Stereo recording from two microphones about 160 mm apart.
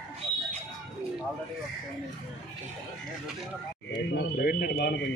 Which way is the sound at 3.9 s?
90° left.